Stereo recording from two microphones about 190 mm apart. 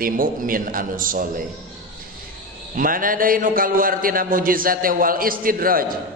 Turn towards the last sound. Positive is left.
turn(degrees=-50)  # may be behind; listen again after turning